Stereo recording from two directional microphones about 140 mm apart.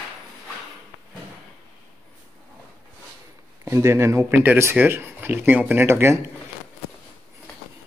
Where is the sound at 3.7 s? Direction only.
20° right (ahead or behind).